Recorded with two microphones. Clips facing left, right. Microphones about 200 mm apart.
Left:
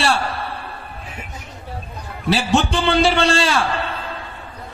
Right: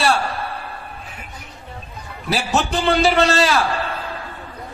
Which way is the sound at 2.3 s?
30° left (ahead or behind).